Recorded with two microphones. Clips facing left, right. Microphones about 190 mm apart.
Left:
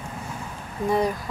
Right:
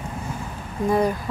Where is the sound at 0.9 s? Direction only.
Centre (ahead or behind).